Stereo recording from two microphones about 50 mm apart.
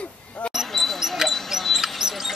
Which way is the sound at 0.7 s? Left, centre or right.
Centre.